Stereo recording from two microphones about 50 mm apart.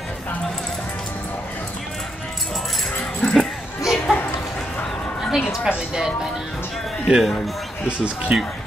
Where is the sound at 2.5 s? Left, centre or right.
Centre.